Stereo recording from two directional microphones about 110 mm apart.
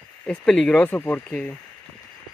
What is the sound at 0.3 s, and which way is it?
Speech, 5° left (ahead or behind).